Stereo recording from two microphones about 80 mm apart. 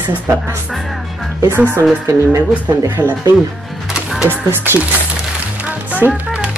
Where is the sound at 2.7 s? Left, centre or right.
Right.